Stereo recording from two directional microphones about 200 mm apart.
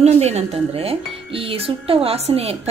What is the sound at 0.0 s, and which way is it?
Speech, 30° right (ahead or behind).